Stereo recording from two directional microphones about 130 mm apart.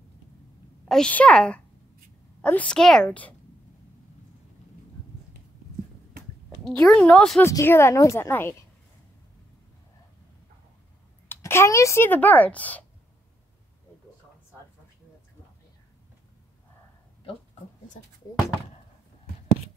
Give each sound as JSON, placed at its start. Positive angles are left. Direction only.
{"t": 0.8, "sound": "a woman's voice", "side_deg": 5}
{"t": 6.6, "sound": "a woman's voice", "side_deg": 5}
{"t": 7.4, "sound": "a woman's voice", "side_deg": 20}
{"t": 11.2, "sound": "speech", "side_deg": 20}